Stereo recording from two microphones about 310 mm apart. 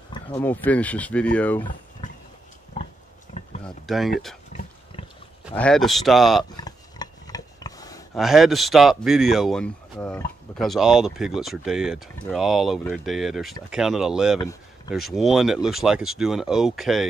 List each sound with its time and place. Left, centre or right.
0.1 s speech: centre
3.6 s speech: centre
4.5 s water: left
5.6 s speech: centre
6.5 s a sound: centre
8.1 s speech: centre